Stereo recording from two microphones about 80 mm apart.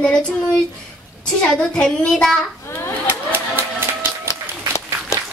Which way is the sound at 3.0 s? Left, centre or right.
Right.